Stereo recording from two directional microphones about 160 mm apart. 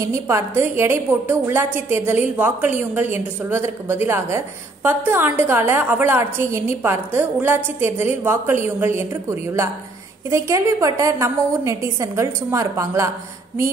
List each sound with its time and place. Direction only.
0.0 s a woman's voice: 20° right (ahead or behind)